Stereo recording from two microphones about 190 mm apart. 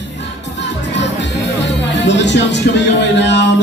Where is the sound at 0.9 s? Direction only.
65° left (ahead or behind).